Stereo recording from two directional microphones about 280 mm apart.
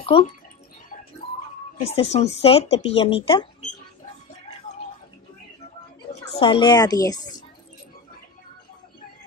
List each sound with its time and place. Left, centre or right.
0.0 s speech: centre
1.2 s a sound: left
1.8 s speech: left
6.3 s speech: centre